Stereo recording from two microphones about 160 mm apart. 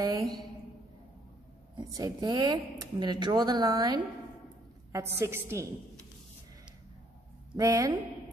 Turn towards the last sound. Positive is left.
turn(degrees=-25)  # may be behind; listen again after turning